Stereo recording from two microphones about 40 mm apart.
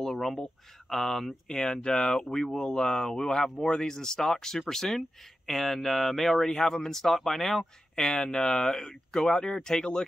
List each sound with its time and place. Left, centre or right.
0.0 s speech: centre
8.1 s speech: centre